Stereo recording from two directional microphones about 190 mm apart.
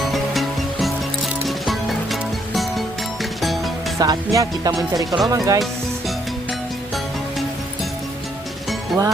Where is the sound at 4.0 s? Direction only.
20° right (ahead or behind).